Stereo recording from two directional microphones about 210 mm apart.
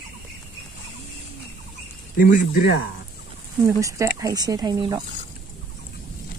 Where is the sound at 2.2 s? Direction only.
40° left (ahead or behind).